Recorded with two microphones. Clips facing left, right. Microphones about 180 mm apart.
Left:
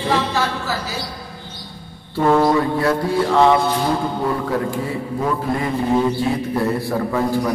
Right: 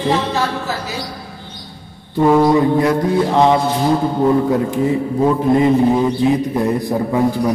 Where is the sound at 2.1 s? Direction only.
10° right (ahead or behind).